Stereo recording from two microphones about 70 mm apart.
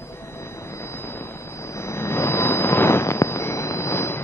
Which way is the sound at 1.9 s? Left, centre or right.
Left.